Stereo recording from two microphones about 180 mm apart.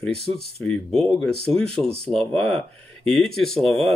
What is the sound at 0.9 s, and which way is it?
Speech, 30° right (ahead or behind).